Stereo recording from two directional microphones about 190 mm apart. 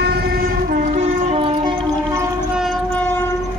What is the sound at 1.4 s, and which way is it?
Music, 30° right (ahead or behind).